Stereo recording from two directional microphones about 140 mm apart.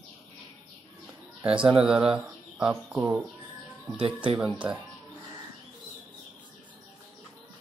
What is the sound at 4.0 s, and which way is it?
Speech, 40° right (ahead or behind).